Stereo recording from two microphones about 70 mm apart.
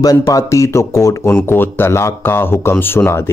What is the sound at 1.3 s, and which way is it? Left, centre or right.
Speech, left.